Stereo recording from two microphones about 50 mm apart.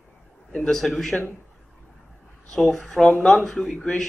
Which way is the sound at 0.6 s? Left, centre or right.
Centre.